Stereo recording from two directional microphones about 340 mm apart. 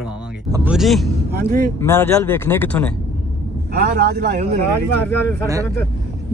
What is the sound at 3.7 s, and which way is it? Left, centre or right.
Speech, right.